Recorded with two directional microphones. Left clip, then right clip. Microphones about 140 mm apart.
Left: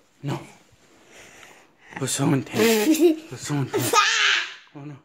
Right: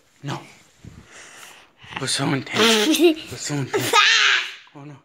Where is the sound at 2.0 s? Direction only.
25° left (ahead or behind).